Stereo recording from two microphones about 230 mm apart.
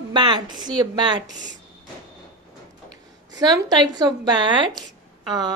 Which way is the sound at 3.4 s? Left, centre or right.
Centre.